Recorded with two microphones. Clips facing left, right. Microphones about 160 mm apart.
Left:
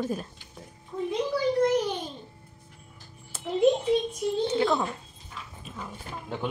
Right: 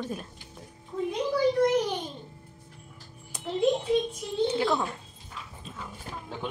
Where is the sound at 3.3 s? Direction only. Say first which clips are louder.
Left 1 dB; 15° right (ahead or behind).